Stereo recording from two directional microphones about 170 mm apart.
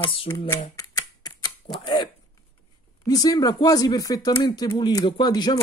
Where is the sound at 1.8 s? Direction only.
25° left (ahead or behind).